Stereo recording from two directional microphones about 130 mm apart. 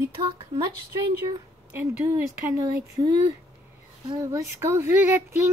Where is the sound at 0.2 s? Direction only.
30° right (ahead or behind).